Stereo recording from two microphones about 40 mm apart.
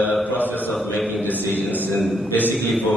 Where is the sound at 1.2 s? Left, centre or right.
Left.